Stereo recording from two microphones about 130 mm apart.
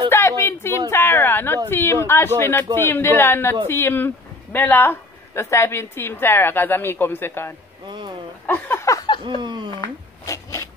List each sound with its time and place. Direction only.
0.1 s a sound: 20° left (ahead or behind)
1.7 s speech: 20° left (ahead or behind)
9.2 s speech: 35° right (ahead or behind)
9.8 s zipper: 25° left (ahead or behind)